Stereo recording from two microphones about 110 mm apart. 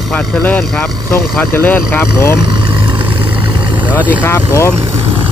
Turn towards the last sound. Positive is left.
turn(degrees=25)  # may be behind; listen again after turning